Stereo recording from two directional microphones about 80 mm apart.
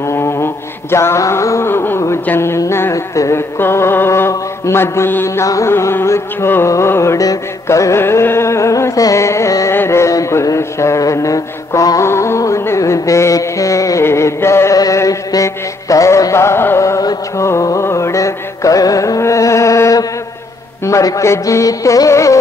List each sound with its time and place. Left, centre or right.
0.0 s mantra: left
2.2 s music: left
14.8 s music: left